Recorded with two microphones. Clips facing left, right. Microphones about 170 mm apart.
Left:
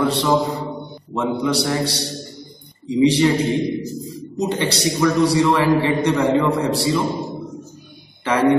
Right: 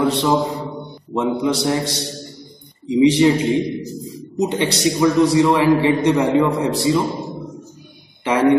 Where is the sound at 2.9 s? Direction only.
20° right (ahead or behind).